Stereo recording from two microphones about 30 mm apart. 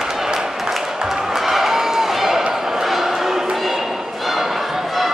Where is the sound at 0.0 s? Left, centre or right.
Centre.